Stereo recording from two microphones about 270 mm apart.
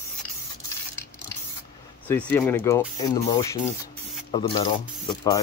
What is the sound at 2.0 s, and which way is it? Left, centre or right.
Speech, centre.